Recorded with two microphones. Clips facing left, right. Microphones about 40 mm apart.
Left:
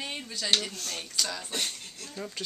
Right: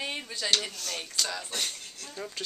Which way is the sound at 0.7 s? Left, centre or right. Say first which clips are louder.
Right 1 dB; right.